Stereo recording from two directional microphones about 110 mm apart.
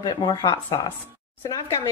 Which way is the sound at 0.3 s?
40° left (ahead or behind).